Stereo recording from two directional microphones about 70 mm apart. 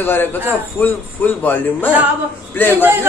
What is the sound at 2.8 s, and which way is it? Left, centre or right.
Speech, right.